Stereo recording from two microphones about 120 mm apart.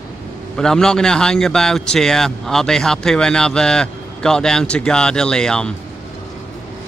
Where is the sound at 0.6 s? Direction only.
5° left (ahead or behind).